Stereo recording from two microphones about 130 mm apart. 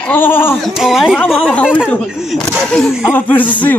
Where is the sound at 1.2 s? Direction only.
10° left (ahead or behind).